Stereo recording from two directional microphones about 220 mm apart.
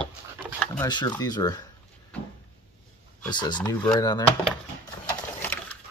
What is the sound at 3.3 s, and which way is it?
Speech, 20° left (ahead or behind).